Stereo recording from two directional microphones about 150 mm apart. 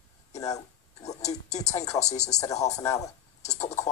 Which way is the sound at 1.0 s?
50° left (ahead or behind).